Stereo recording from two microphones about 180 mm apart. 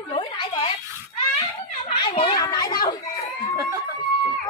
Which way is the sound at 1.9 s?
30° left (ahead or behind).